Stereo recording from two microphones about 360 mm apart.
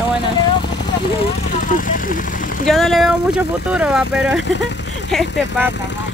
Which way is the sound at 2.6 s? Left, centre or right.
Centre.